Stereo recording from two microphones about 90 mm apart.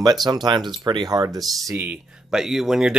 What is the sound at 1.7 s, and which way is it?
Speech, 20° right (ahead or behind).